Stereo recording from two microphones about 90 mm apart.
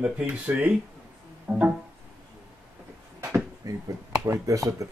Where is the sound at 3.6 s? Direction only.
40° right (ahead or behind).